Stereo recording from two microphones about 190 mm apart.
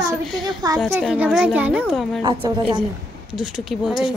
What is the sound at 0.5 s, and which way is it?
Speech, 20° right (ahead or behind).